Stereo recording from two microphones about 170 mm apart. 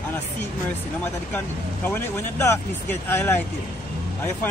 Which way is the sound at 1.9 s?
15° left (ahead or behind).